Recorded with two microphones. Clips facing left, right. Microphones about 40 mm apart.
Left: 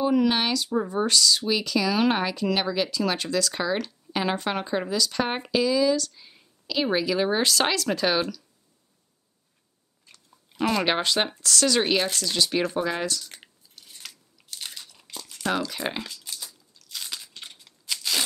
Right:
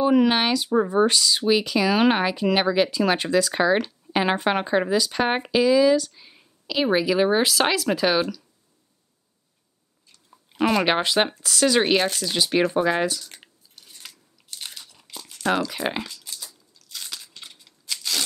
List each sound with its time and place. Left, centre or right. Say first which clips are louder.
0.0 s speech: right 3 dB; right; by 8.5 s centre
10.3 s speech: right 4 dB; right
13.2 s a sound: even; centre
14.0 s crumpling: left 1 dB; centre
15.6 s speech: right 3 dB; centre
17.1 s a sound: left 1 dB; centre